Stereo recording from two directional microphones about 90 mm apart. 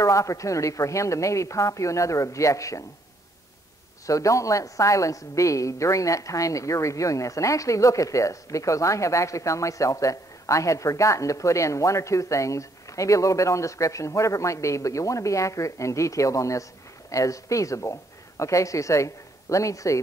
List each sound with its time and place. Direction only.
0.0 s a woman's voice: 35° left (ahead or behind)
4.0 s a woman's voice: 35° left (ahead or behind)